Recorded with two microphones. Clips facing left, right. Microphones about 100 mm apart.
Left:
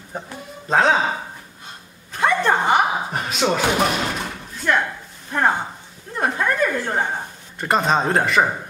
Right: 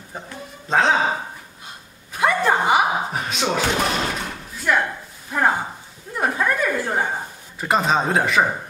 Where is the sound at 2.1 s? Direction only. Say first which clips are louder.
Even; 5° right (ahead or behind).